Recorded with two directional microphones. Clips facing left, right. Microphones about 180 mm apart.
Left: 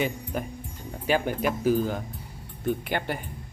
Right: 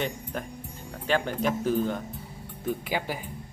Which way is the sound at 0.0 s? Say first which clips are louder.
Left 3 dB; 5° left (ahead or behind).